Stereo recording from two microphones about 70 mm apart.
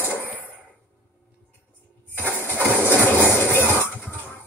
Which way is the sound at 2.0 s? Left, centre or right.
Left.